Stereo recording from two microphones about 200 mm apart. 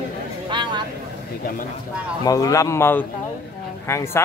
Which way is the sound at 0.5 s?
25° right (ahead or behind).